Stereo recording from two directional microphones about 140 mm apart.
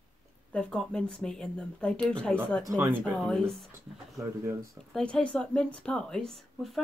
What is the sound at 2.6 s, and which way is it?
Speech, 25° right (ahead or behind).